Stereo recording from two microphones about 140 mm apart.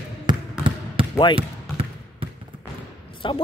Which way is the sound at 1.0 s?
40° right (ahead or behind).